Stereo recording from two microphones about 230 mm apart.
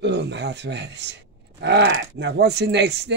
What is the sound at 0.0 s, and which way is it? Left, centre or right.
Speech, right.